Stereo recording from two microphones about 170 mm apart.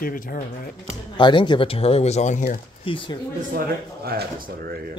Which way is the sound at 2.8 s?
30° left (ahead or behind).